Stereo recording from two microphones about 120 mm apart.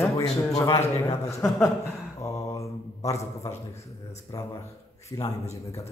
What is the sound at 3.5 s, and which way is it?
Speech, 65° left (ahead or behind).